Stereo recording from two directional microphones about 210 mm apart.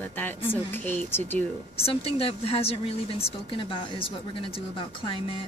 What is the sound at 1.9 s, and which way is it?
Speech, 25° left (ahead or behind).